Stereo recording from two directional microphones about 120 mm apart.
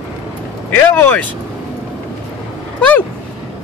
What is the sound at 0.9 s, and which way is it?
Speech, 15° left (ahead or behind).